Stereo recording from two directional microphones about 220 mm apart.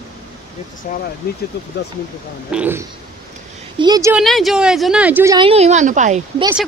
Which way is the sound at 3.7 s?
20° right (ahead or behind).